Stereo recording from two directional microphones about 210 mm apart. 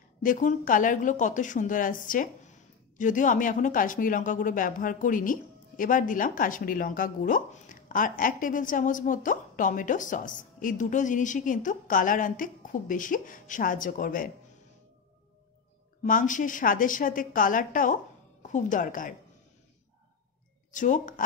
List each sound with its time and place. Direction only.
0.2 s speech: 40° left (ahead or behind)
16.0 s a woman's voice: 40° left (ahead or behind)
20.7 s speech: 40° left (ahead or behind)